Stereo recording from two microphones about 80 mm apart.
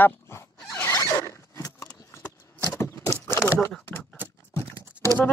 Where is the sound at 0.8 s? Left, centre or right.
Left.